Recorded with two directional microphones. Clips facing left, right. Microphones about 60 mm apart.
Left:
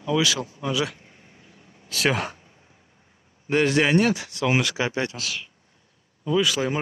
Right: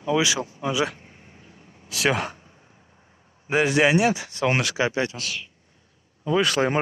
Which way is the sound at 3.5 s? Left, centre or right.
Centre.